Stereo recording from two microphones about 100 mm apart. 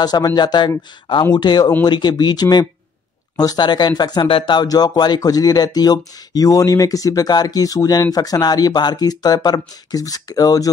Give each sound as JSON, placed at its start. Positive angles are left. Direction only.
{"t": 0.0, "sound": "speech", "side_deg": 40}
{"t": 4.3, "sound": "speech", "side_deg": 55}
{"t": 4.6, "sound": "speech", "side_deg": 40}